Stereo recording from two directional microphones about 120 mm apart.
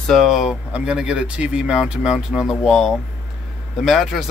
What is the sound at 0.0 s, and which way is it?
Speech, centre (ahead or behind).